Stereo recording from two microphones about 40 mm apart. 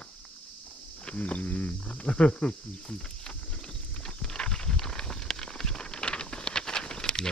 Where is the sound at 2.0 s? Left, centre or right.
Left.